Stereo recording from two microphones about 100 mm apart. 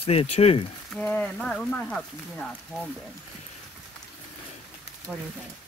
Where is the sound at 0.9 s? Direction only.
15° left (ahead or behind).